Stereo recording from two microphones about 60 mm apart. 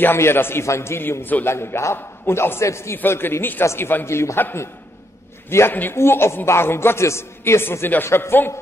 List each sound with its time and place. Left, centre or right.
0.0 s a man's voice: left
1.5 s a man's voice: left
5.7 s a man's voice: left